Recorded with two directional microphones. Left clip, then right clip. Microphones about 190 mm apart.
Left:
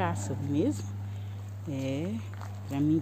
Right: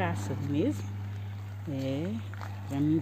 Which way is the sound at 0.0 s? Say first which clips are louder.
Left 1 dB; centre (ahead or behind).